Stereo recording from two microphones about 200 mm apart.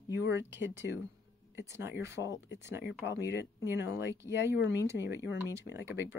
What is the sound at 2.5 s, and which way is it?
Speech, 60° left (ahead or behind).